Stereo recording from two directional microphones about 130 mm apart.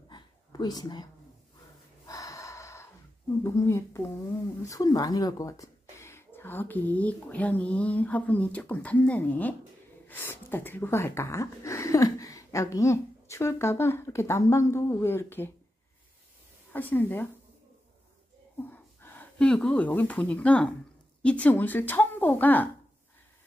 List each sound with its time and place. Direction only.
0.1 s a sound: 30° left (ahead or behind)
2.0 s snort: 25° left (ahead or behind)
3.4 s a woman's voice: 20° left (ahead or behind)
16.7 s speech: 15° left (ahead or behind)
18.7 s speech: 15° left (ahead or behind)